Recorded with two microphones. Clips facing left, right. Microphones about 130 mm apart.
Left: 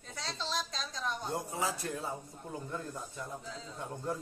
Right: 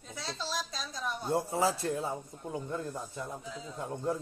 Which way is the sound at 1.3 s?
30° right (ahead or behind).